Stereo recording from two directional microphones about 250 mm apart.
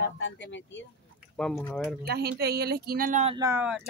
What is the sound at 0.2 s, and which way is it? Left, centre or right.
Speech, left.